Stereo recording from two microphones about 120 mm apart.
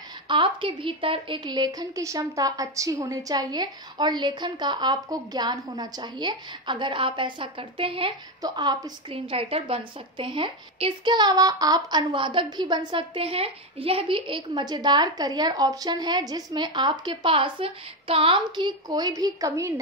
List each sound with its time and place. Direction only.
0.3 s a woman's voice: 45° right (ahead or behind)
8.4 s a woman's voice: 35° right (ahead or behind)
9.1 s a woman's voice: 50° right (ahead or behind)
18.9 s a woman's voice: 30° right (ahead or behind)